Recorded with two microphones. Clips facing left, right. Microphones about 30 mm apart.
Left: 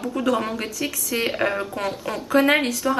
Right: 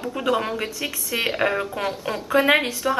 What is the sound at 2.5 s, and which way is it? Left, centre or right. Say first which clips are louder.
Speech: right 1 dB; right.